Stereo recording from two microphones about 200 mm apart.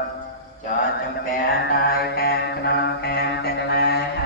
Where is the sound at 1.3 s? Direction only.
45° left (ahead or behind).